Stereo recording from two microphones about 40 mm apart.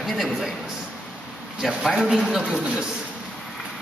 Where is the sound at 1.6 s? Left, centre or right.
Centre.